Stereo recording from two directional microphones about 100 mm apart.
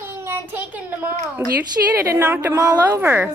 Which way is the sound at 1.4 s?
40° right (ahead or behind).